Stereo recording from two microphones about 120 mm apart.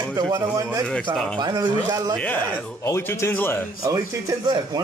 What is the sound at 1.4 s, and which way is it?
Speech, 35° right (ahead or behind).